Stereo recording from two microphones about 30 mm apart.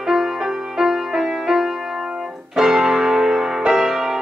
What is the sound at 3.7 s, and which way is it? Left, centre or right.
Music, centre.